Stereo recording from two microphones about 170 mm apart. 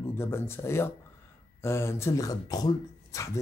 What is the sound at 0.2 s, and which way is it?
Speech, 15° left (ahead or behind).